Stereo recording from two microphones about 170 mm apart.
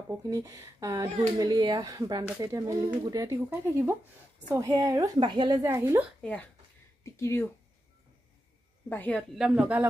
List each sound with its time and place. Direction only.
0.2 s speech: 20° right (ahead or behind)
7.0 s speech: 15° left (ahead or behind)
8.8 s a woman's voice: 10° left (ahead or behind)
9.4 s speech: 5° right (ahead or behind)